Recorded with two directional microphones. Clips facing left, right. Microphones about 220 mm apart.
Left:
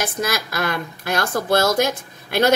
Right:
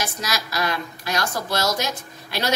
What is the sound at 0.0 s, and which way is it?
A woman's voice, 55° left (ahead or behind).